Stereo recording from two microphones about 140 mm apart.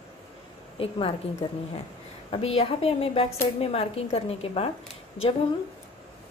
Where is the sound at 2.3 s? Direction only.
45° left (ahead or behind).